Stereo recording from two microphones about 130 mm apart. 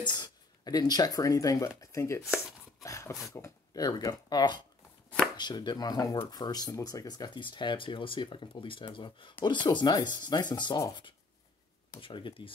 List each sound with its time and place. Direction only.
0.0 s speech: 35° left (ahead or behind)